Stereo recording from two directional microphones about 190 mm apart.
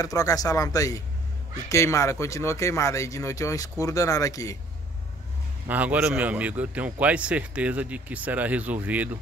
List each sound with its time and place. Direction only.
0.0 s speech: 20° left (ahead or behind)
5.7 s a man's voice: 10° right (ahead or behind)